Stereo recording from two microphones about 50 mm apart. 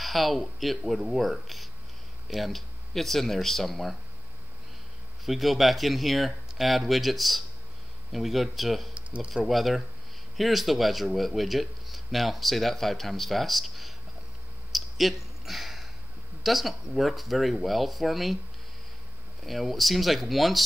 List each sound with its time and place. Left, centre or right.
0.0 s speech: centre
5.2 s speech: centre
8.9 s a sound: right
9.3 s speech: centre
14.7 s a sound: centre
16.4 s speech: centre
19.4 s speech: centre